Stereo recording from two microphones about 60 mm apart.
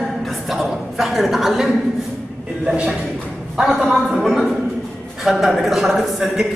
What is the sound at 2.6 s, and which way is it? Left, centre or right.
Speech, centre.